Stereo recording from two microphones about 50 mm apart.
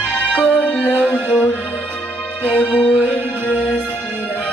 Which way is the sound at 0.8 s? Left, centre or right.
Left.